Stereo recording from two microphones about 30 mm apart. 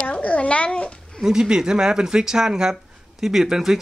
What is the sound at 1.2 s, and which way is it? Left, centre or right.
Speech, right.